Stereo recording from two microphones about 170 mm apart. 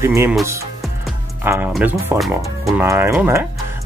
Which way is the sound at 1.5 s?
10° right (ahead or behind).